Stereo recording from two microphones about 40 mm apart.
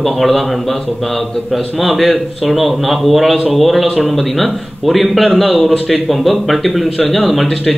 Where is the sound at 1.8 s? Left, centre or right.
Centre.